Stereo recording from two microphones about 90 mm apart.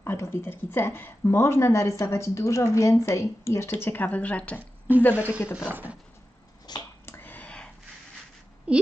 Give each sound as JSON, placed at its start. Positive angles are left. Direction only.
{"t": 0.0, "sound": "a woman's voice", "side_deg": 25}
{"t": 4.6, "sound": "a sound", "side_deg": -20}
{"t": 5.1, "sound": "speech", "side_deg": -20}
{"t": 6.7, "sound": "a sound", "side_deg": 50}
{"t": 7.1, "sound": "whispering", "side_deg": 20}
{"t": 8.7, "sound": "a woman's voice", "side_deg": -10}